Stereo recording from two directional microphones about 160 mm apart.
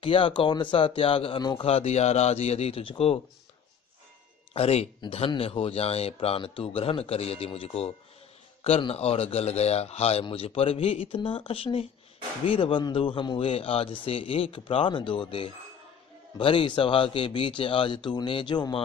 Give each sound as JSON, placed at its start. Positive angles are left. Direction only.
{"t": 0.0, "sound": "a man's voice", "side_deg": 35}
{"t": 4.6, "sound": "a man's voice", "side_deg": 40}